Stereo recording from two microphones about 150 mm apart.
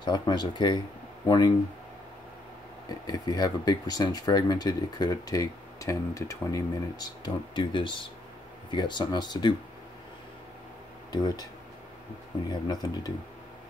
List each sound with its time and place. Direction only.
0.0 s speech: 30° left (ahead or behind)
2.9 s speech: 25° left (ahead or behind)
11.1 s speech: 25° left (ahead or behind)
12.4 s speech: 25° left (ahead or behind)